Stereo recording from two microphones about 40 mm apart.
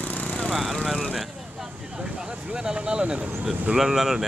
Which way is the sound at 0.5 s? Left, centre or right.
Centre.